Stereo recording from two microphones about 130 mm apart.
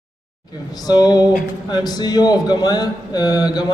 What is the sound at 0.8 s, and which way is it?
Speech, 30° left (ahead or behind).